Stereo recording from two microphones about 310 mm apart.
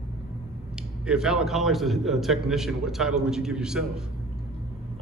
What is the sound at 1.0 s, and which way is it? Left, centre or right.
A man's voice, centre.